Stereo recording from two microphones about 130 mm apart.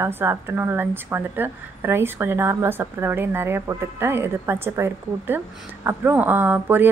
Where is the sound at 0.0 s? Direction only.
20° right (ahead or behind).